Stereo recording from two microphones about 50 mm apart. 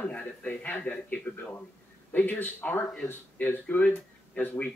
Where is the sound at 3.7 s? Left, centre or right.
Left.